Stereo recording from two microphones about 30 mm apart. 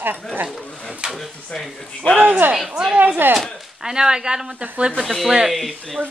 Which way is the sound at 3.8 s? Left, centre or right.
Right.